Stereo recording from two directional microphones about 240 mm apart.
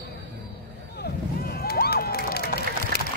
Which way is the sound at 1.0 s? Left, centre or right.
Left.